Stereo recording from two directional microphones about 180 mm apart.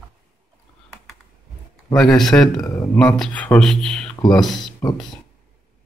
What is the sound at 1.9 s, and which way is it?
Speech, 5° left (ahead or behind).